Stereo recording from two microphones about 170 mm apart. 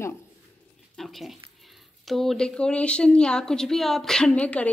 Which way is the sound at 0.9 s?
Centre (ahead or behind).